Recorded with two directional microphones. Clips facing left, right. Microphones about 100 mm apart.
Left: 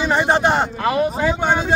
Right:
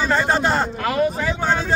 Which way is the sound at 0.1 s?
20° left (ahead or behind).